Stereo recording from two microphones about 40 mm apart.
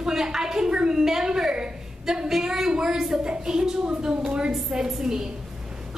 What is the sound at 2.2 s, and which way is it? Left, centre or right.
A woman's voice, centre.